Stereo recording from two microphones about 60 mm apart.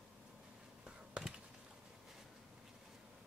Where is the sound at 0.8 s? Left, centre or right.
Centre.